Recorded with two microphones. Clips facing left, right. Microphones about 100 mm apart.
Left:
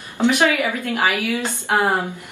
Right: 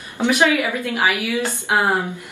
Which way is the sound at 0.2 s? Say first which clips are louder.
Even; 15° right (ahead or behind).